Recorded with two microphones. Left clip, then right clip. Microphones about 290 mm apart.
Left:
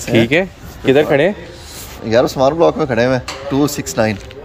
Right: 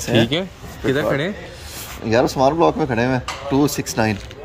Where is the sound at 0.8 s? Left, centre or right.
Centre.